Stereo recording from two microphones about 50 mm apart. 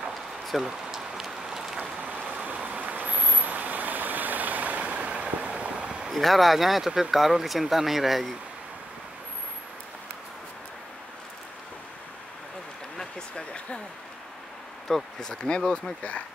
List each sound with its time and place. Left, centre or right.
0.5 s rain: centre
1.8 s vehicle: right
6.1 s speech: centre
12.9 s a sound: centre
15.1 s speech: centre